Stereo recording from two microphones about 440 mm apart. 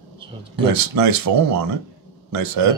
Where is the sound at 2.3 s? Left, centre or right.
Right.